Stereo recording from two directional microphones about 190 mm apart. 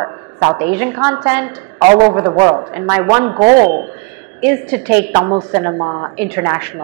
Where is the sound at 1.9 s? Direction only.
25° right (ahead or behind).